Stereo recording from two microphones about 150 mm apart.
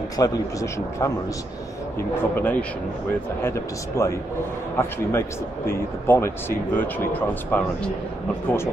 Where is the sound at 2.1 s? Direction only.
15° left (ahead or behind).